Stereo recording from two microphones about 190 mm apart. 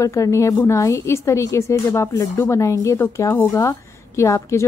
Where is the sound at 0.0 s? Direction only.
15° left (ahead or behind).